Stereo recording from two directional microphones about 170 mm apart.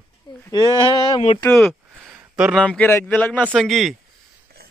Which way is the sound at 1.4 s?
10° left (ahead or behind).